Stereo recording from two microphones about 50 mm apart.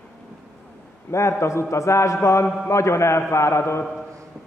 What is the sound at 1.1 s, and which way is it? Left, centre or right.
Mantra, left.